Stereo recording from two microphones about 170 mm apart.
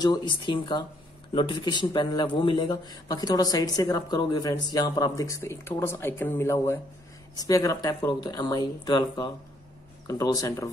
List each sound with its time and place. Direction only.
0.0 s a man's voice: 25° left (ahead or behind)